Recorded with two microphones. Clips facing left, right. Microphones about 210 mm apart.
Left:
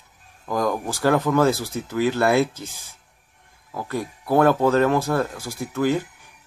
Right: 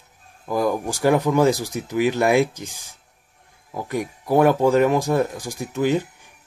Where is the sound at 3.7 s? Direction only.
15° right (ahead or behind).